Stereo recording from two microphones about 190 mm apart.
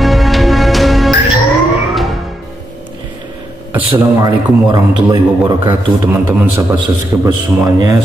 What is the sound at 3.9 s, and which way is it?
A man's voice, 20° right (ahead or behind).